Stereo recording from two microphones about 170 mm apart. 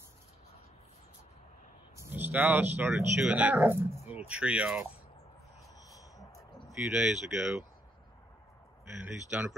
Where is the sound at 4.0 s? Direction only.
10° right (ahead or behind).